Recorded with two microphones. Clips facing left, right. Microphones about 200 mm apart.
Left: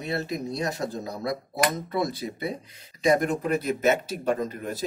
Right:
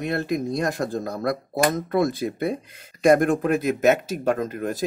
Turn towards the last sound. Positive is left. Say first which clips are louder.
# right 3 dB
turn(degrees=-50)  # may be behind; listen again after turning